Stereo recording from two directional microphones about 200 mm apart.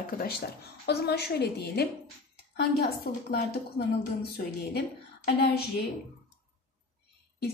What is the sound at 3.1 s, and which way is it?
Speech, 50° left (ahead or behind).